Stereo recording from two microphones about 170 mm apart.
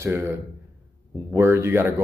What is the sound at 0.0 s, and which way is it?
Speech, 15° right (ahead or behind).